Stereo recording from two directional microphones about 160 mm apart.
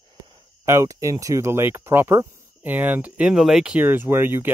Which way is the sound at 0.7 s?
20° right (ahead or behind).